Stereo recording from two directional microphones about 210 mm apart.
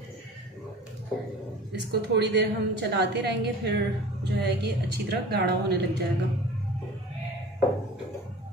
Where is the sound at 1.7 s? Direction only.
50° right (ahead or behind).